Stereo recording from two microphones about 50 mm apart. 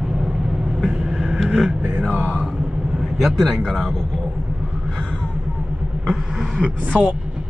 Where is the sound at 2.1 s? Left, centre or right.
Right.